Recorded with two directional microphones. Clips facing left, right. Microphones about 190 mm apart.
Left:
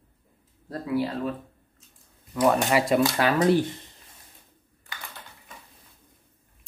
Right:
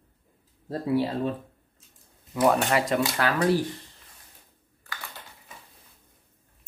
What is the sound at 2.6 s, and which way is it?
Speech, 5° left (ahead or behind).